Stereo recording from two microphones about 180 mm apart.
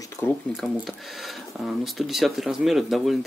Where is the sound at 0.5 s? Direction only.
Centre (ahead or behind).